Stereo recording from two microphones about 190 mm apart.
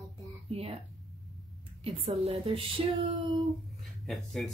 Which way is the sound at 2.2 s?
30° right (ahead or behind).